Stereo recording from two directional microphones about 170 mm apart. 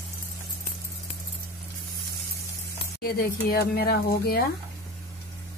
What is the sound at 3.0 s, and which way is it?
Speech, 60° left (ahead or behind).